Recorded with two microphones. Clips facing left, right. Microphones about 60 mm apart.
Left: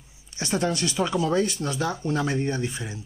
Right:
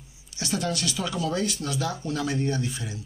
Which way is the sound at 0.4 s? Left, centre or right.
Left.